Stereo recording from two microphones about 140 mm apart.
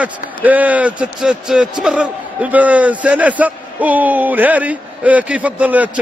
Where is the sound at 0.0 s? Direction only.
10° right (ahead or behind).